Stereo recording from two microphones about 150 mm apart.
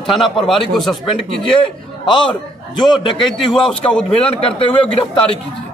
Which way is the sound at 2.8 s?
35° left (ahead or behind).